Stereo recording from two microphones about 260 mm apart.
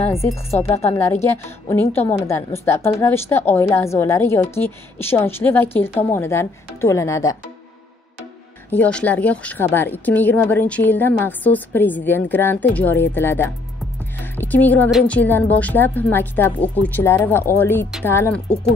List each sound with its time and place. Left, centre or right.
0.0 s a woman's voice: centre
8.6 s a woman's voice: centre